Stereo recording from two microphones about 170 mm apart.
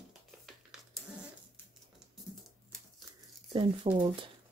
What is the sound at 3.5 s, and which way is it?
Speech, 30° right (ahead or behind).